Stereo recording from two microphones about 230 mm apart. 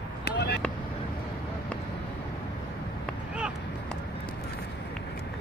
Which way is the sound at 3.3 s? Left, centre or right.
Centre.